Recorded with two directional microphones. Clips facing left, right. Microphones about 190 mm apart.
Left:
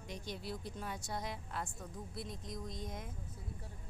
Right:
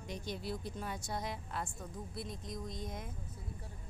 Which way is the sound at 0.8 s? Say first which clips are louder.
Right 2 dB; 30° right (ahead or behind).